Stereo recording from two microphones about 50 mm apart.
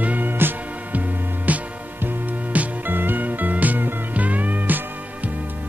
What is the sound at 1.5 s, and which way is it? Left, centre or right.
Music, right.